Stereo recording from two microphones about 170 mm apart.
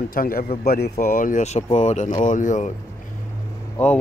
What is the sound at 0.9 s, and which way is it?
Speech, 50° left (ahead or behind).